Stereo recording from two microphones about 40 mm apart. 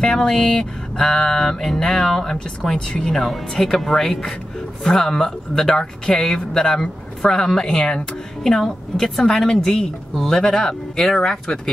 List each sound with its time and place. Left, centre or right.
0.0 s a woman's voice: centre
3.3 s a woman's voice: centre